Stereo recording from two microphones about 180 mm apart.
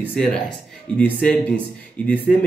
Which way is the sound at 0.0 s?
5° left (ahead or behind).